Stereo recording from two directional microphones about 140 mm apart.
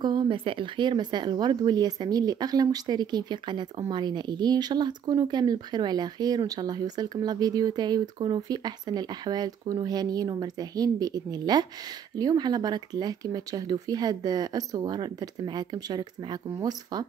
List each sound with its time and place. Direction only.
0.0 s speech: 35° right (ahead or behind)